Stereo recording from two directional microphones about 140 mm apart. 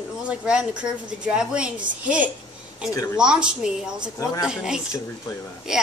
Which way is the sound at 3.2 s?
5° right (ahead or behind).